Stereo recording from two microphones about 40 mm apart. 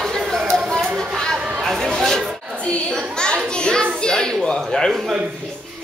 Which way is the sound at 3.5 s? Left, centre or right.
Left.